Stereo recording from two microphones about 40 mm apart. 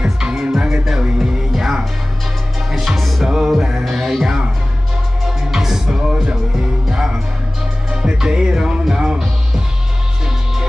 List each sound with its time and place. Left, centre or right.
0.0 s music: centre
3.0 s music: centre
3.3 s music: centre